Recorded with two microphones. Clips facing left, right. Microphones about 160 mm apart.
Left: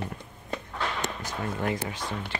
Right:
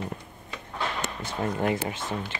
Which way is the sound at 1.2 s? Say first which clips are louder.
Right 6 dB; 25° right (ahead or behind).